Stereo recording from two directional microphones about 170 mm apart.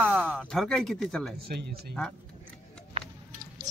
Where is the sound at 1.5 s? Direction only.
70° right (ahead or behind).